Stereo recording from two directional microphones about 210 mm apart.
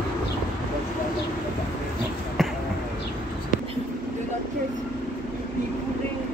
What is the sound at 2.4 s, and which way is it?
Basketball bounce, centre (ahead or behind).